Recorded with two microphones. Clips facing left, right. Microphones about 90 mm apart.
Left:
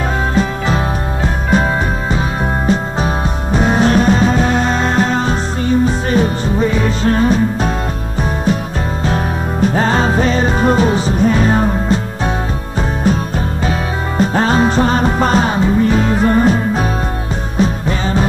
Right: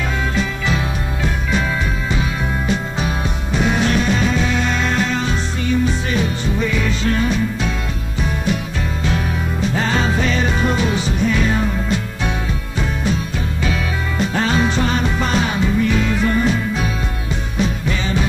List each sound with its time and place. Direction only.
0.3 s music: 40° left (ahead or behind)